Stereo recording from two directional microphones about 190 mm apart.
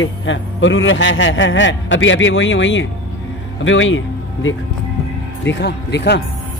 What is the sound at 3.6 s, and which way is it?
Speech, 90° left.